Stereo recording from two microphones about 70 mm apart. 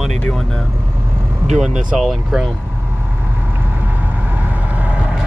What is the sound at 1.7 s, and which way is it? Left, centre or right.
Speech, centre.